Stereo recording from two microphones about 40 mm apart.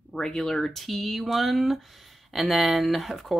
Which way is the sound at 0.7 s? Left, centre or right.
Centre.